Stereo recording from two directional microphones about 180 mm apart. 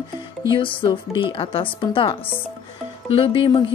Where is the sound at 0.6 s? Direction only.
30° left (ahead or behind).